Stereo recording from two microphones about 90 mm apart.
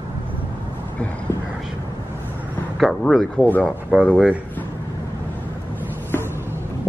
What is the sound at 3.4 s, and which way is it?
Speech, 20° left (ahead or behind).